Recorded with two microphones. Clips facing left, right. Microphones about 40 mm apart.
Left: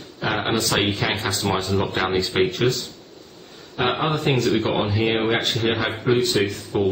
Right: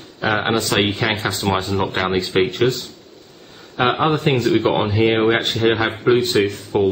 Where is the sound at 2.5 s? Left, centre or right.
Right.